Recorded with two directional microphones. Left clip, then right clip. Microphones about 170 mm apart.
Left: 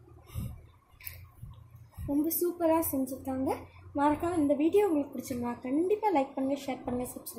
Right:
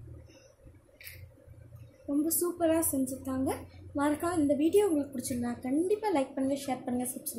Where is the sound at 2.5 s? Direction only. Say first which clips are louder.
Left 1 dB; 20° right (ahead or behind).